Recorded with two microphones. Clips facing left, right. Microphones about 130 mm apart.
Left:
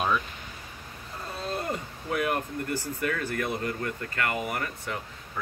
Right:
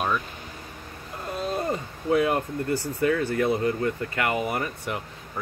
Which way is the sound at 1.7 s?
25° right (ahead or behind).